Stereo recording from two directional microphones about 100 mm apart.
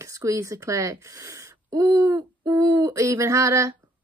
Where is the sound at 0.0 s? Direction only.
30° right (ahead or behind).